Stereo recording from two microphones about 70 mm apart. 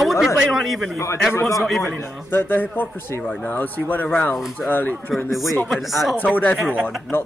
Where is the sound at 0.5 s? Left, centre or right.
Centre.